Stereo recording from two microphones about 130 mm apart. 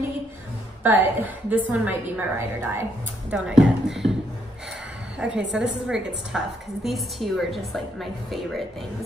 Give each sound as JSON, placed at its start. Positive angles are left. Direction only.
{"t": 0.8, "sound": "a woman's voice", "side_deg": -15}
{"t": 3.3, "sound": "a woman's voice", "side_deg": -5}
{"t": 5.2, "sound": "a woman's voice", "side_deg": -5}